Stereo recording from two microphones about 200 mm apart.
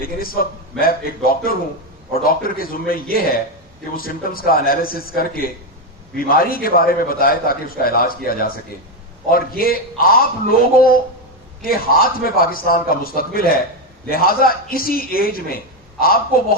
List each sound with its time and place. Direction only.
0.0 s a man's voice: 45° left (ahead or behind)